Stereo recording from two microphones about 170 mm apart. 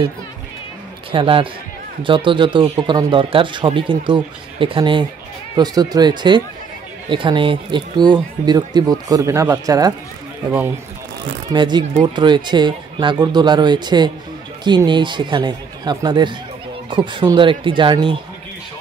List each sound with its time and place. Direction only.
1.1 s speech: 30° right (ahead or behind)
11.5 s speech: 25° right (ahead or behind)